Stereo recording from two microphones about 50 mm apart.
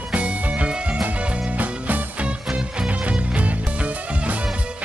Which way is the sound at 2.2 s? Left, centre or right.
Right.